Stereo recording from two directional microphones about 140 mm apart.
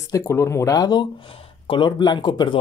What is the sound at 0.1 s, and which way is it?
Speech, 20° left (ahead or behind).